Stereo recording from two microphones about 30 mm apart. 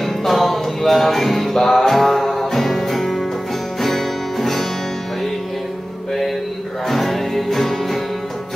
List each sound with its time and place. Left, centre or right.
0.0 s music: centre
6.9 s music: centre